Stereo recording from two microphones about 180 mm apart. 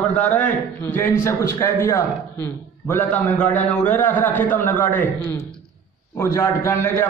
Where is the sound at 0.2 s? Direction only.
10° left (ahead or behind).